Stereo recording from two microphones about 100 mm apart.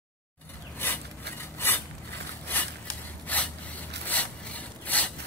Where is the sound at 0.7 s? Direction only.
20° left (ahead or behind).